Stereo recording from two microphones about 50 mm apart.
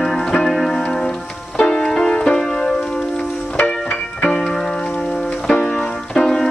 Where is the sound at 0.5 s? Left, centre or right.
Centre.